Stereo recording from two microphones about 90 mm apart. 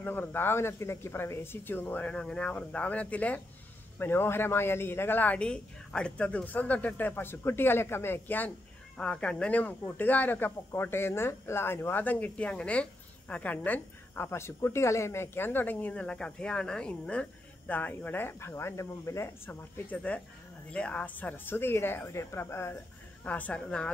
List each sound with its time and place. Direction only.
0.0 s speech: 20° left (ahead or behind)
8.9 s speech: 10° left (ahead or behind); by 19.5 s 35° left (ahead or behind)
19.9 s speech: 15° left (ahead or behind)
23.2 s speech: 15° left (ahead or behind)